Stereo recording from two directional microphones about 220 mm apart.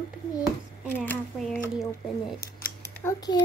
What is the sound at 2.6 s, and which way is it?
Scissors, 40° left (ahead or behind).